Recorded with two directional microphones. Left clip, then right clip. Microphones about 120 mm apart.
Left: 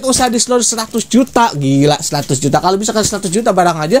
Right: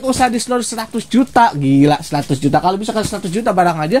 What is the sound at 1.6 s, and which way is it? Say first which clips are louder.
Speech: left 1 dB; 35° left (ahead or behind).